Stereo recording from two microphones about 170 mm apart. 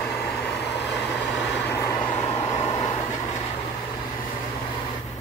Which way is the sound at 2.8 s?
25° left (ahead or behind).